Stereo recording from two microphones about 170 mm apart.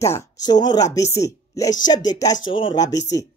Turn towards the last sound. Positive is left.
turn(degrees=20)  # may be behind; listen again after turning